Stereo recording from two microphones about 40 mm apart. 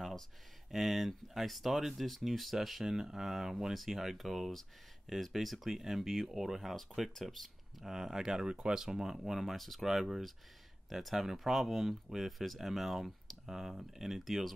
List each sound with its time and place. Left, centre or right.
0.7 s speech: centre
7.8 s speech: centre
9.4 s speech: centre